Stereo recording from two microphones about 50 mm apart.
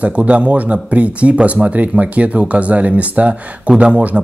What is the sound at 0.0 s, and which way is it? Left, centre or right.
Speech, right.